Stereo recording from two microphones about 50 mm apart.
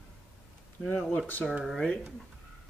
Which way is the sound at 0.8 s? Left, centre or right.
Centre.